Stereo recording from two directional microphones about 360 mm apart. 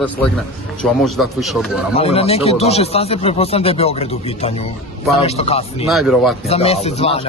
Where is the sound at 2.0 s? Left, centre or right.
Centre.